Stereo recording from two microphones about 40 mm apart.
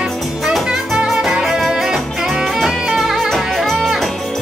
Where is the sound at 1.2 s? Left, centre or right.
Centre.